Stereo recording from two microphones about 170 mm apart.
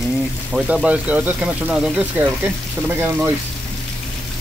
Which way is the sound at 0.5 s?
5° right (ahead or behind).